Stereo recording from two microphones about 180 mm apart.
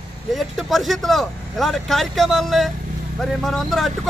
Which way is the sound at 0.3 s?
Centre (ahead or behind).